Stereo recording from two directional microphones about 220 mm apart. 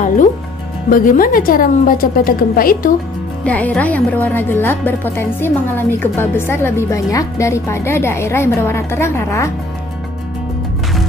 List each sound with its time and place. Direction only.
0.8 s a woman's voice: 35° left (ahead or behind)
3.4 s a woman's voice: 5° left (ahead or behind)